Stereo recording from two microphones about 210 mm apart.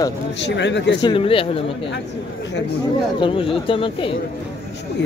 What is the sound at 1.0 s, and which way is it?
Speech, 25° left (ahead or behind).